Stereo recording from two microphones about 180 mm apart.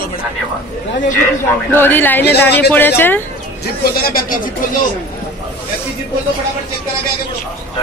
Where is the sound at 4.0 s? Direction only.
50° left (ahead or behind).